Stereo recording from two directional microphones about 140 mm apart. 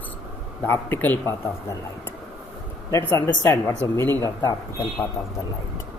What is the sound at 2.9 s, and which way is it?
Speech, 20° left (ahead or behind).